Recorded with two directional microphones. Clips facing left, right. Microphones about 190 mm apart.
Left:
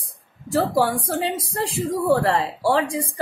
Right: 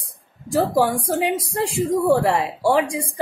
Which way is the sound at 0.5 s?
15° right (ahead or behind).